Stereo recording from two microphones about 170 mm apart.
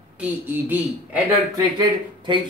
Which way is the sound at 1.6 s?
25° right (ahead or behind).